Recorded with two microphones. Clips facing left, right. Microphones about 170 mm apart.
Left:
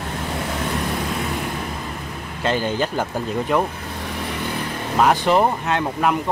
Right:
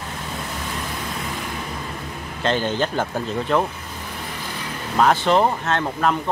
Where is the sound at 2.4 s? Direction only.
10° left (ahead or behind).